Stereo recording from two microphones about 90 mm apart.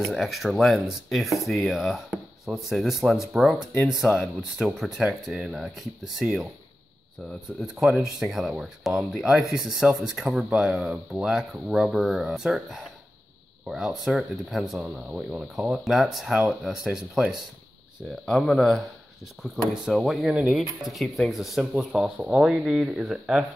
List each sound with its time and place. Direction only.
0.1 s speech: centre (ahead or behind)
7.6 s speech: 5° right (ahead or behind)
14.8 s speech: 15° right (ahead or behind)
18.2 s speech: centre (ahead or behind)